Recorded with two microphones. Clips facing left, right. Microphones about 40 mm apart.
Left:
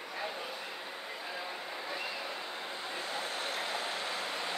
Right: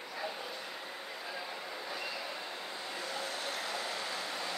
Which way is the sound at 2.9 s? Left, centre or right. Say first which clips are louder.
Left 1 dB; left.